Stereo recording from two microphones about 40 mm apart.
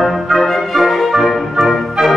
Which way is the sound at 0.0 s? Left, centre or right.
Centre.